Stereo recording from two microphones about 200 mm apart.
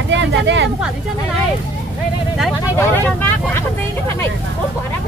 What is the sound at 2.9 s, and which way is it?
Speech, 10° left (ahead or behind).